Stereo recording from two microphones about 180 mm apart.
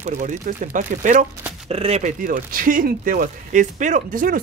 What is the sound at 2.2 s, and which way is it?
Speech, 50° right (ahead or behind).